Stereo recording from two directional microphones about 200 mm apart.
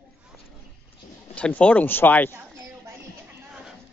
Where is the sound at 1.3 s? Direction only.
5° left (ahead or behind).